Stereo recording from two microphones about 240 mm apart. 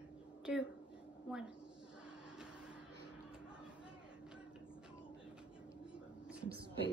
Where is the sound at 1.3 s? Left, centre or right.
Centre.